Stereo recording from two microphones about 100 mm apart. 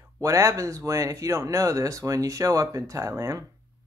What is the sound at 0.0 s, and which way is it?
Speech, 30° right (ahead or behind).